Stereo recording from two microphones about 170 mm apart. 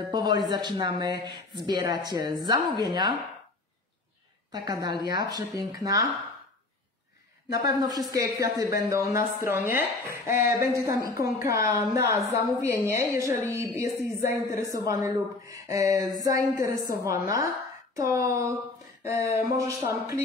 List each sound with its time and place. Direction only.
0.1 s a woman's voice: 25° right (ahead or behind)
4.5 s a woman's voice: 25° right (ahead or behind)
7.5 s a woman's voice: 20° right (ahead or behind)